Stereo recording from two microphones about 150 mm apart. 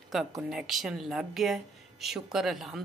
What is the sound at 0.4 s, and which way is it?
Speech, 5° right (ahead or behind).